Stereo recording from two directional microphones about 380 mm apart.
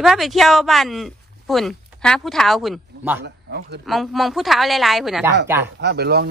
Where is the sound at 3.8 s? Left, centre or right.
Centre.